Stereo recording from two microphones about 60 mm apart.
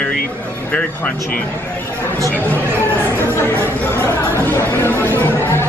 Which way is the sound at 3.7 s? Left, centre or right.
Left.